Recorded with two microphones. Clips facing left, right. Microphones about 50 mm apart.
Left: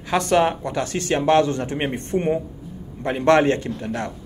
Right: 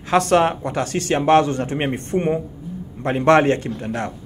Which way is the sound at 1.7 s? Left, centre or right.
Centre.